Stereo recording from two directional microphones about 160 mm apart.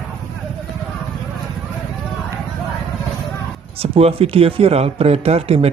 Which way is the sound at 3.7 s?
40° right (ahead or behind).